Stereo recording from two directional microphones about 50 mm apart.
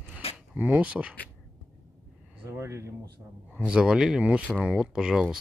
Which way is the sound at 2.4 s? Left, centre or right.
Right.